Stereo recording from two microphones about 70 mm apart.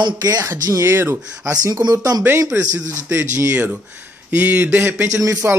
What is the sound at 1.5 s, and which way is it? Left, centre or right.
Speech, right.